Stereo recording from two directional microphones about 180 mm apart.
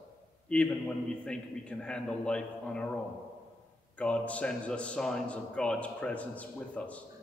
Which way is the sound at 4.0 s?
5° left (ahead or behind).